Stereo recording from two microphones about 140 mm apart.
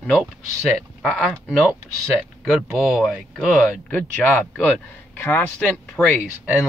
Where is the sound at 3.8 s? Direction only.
10° left (ahead or behind).